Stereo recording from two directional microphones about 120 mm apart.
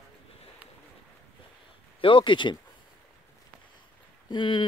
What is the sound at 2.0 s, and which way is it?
Speech, 45° left (ahead or behind).